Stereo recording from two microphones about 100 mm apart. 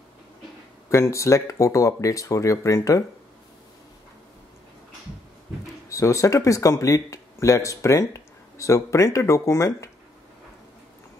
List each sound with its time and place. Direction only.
0.8 s speech: 30° left (ahead or behind)
5.9 s speech: 30° left (ahead or behind)